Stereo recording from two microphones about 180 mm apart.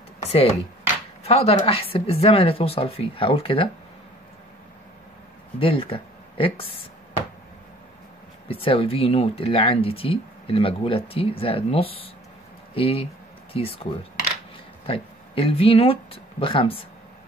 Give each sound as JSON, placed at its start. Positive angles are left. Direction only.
{"t": 0.2, "sound": "speech", "side_deg": 35}
{"t": 5.6, "sound": "speech", "side_deg": 30}
{"t": 8.5, "sound": "speech", "side_deg": 30}
{"t": 14.9, "sound": "speech", "side_deg": 30}